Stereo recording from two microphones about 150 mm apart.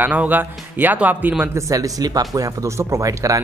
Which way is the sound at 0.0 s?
10° right (ahead or behind).